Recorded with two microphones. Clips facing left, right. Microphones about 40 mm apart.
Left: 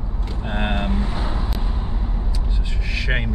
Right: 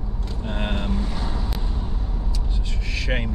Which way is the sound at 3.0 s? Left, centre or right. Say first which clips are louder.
Left 2 dB; centre.